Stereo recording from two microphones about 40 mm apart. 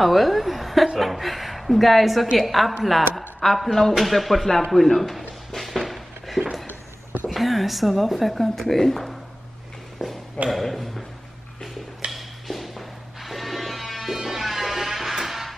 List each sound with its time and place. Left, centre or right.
0.0 s speech: centre
5.5 s a sound: centre
7.2 s speech: centre
10.5 s speech: centre
12.1 s music: centre